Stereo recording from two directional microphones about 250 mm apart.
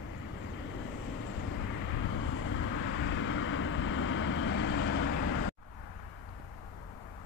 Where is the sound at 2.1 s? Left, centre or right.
Left.